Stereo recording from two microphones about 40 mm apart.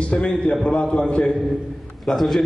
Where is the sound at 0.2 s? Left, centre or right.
Left.